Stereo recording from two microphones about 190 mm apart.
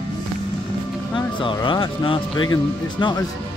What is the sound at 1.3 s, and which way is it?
Speech, 25° left (ahead or behind).